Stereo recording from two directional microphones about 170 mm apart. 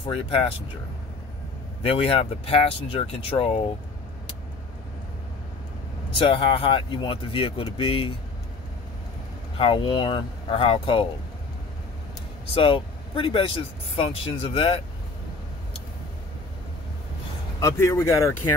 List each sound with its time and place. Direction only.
0.0 s speech: 30° left (ahead or behind)
1.8 s speech: 35° left (ahead or behind)
6.1 s speech: 30° left (ahead or behind)
9.6 s speech: 30° left (ahead or behind)
12.5 s speech: 30° left (ahead or behind)
17.6 s speech: 15° left (ahead or behind)